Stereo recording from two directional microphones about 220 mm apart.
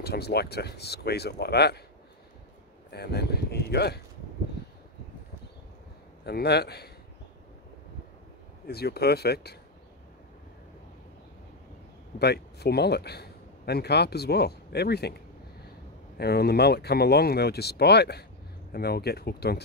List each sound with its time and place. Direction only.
0.0 s speech: 45° left (ahead or behind)
2.9 s speech: 50° left (ahead or behind)
6.2 s speech: 45° left (ahead or behind)
8.6 s speech: 45° left (ahead or behind)
12.2 s speech: 50° left (ahead or behind)